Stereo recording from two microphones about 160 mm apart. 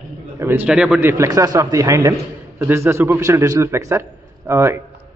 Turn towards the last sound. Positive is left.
turn(degrees=-15)  # may be behind; listen again after turning